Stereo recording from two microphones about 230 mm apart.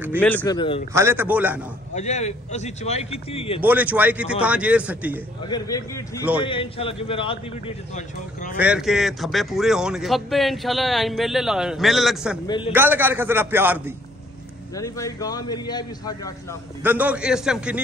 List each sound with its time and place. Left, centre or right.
0.2 s a man's voice: centre
0.6 s a man's voice: left
0.9 s speech: centre
2.0 s a man's voice: left
3.6 s speech: centre
5.4 s a man's voice: centre; by 8.5 s left
8.5 s speech: centre
12.4 s a man's voice: left
12.7 s speech: centre
14.8 s a man's voice: centre
16.8 s speech: centre